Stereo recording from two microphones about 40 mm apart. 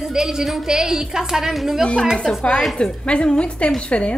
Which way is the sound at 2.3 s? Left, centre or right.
Left.